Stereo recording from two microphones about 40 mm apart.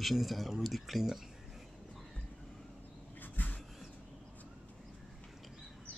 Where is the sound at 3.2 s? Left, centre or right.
Left.